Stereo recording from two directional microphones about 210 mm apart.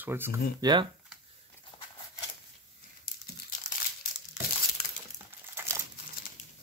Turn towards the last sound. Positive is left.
turn(degrees=-10)  # may be behind; listen again after turning